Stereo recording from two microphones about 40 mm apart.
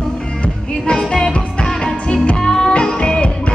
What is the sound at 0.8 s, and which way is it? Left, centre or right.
Music, left.